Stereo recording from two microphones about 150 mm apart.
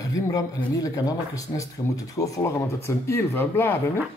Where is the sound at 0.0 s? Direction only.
20° left (ahead or behind).